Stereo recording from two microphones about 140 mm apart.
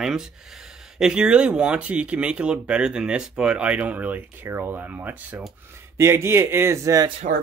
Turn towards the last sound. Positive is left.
turn(degrees=-25)  # may be behind; listen again after turning